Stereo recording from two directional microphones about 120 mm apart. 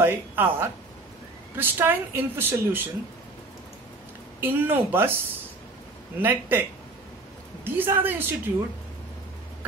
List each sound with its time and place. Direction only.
0.0 s a woman's voice: 15° right (ahead or behind)
4.4 s speech: 15° right (ahead or behind)
7.6 s speech: 15° right (ahead or behind)